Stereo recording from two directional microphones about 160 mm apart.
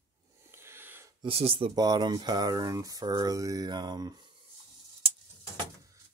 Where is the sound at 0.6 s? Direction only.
15° right (ahead or behind).